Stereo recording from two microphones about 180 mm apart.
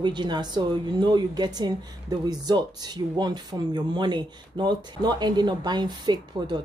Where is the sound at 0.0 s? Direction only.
25° right (ahead or behind).